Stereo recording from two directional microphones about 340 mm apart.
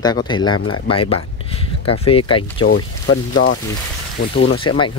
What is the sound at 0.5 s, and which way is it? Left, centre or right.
Speech, left.